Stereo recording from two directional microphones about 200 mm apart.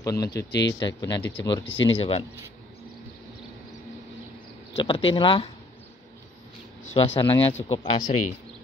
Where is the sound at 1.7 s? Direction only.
65° left (ahead or behind).